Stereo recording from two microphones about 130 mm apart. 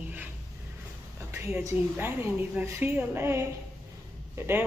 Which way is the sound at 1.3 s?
20° right (ahead or behind).